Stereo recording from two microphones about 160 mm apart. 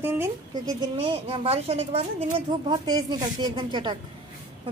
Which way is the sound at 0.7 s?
35° right (ahead or behind).